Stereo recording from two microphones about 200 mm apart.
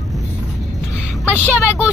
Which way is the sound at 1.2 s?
10° left (ahead or behind).